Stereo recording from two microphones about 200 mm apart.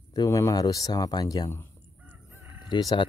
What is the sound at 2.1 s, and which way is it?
Chicken, 10° right (ahead or behind).